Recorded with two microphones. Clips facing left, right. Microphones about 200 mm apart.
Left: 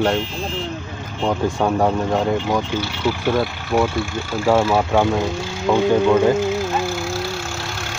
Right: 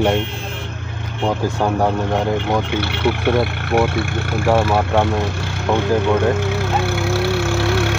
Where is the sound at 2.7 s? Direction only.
60° right (ahead or behind).